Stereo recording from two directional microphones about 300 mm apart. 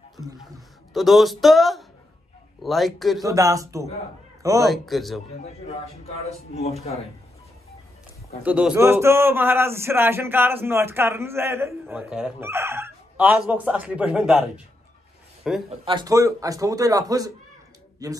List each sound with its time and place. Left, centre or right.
0.9 s speech: centre
3.3 s speech: centre
4.6 s speech: centre
6.0 s speech: left
8.4 s speech: centre
15.7 s speech: centre